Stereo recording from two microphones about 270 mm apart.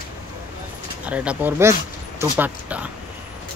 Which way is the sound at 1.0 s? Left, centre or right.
Centre.